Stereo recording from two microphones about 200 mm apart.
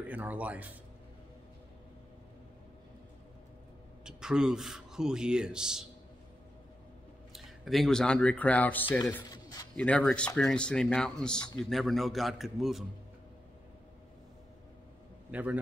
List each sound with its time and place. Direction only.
0.1 s speech: 10° right (ahead or behind)
4.0 s a man's voice: 5° right (ahead or behind)
7.3 s speech: centre (ahead or behind); by 9.7 s 20° left (ahead or behind)
9.8 s a man's voice: 5° left (ahead or behind)
15.3 s speech: 10° right (ahead or behind)